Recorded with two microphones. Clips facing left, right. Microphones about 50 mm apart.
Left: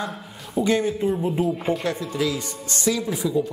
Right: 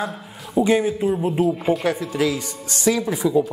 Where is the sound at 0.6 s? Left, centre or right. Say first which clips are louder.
Right 3 dB; centre.